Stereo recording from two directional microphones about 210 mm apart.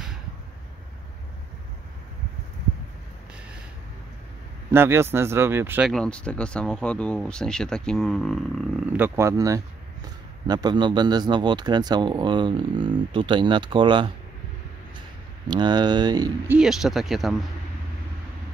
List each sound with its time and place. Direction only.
4.7 s speech: 10° right (ahead or behind)
8.9 s speech: 10° right (ahead or behind)
15.4 s speech: 20° right (ahead or behind)
16.5 s speech: centre (ahead or behind)